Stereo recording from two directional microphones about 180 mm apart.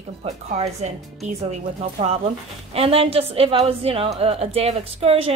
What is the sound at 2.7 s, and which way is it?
Speech, 35° right (ahead or behind).